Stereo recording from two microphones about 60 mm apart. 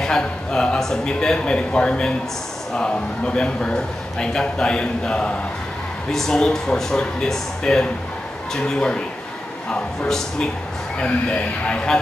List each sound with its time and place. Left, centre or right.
0.0 s a man's voice: centre
6.1 s a man's voice: centre